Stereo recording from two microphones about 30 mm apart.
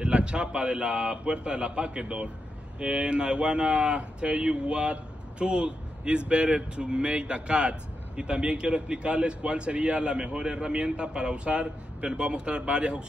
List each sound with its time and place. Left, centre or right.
0.0 s a man's voice: right